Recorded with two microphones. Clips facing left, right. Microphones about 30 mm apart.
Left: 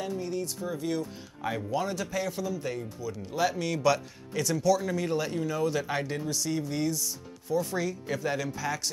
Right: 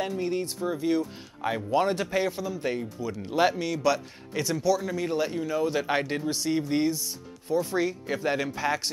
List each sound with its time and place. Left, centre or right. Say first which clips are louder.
0.0 s speech: right 4 dB; right
0.7 s speech: right 7 dB; centre
1.8 s speech: right 9 dB; right
2.3 s speech: even; centre
2.6 s speech: right 4 dB; right
3.7 s a man's voice: even; centre
4.3 s speech: even; centre